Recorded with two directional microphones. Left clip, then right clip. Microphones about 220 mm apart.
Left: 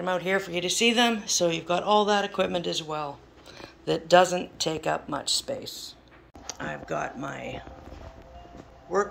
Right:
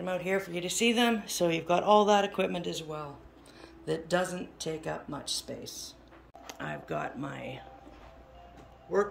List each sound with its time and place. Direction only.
0.0 s speech: 5° right (ahead or behind)
6.4 s speech: 10° right (ahead or behind)
8.9 s speech: 5° right (ahead or behind)